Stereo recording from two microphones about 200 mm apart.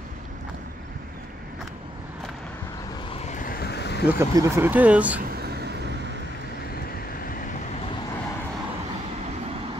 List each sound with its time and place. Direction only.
3.1 s vehicle: 35° left (ahead or behind); by 4.1 s 55° left (ahead or behind)
4.1 s speech: 15° right (ahead or behind)